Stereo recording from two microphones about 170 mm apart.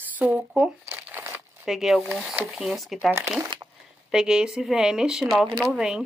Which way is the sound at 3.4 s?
20° right (ahead or behind).